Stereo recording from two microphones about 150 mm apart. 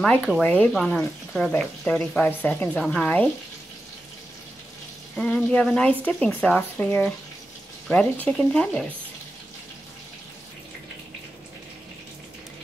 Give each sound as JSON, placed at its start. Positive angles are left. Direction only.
{"t": 0.0, "sound": "speech", "side_deg": 5}
{"t": 5.1, "sound": "speech", "side_deg": 5}